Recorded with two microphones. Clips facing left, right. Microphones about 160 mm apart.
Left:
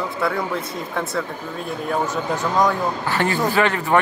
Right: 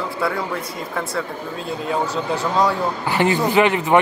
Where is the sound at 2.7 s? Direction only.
15° right (ahead or behind).